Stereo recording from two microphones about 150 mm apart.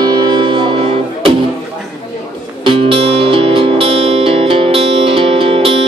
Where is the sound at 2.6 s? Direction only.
35° right (ahead or behind).